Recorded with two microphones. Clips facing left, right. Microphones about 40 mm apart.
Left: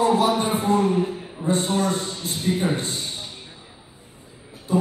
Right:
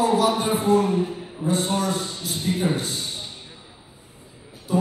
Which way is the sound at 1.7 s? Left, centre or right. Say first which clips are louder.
Left 2 dB; left.